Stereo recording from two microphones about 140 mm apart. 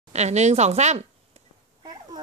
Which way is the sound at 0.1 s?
55° right (ahead or behind).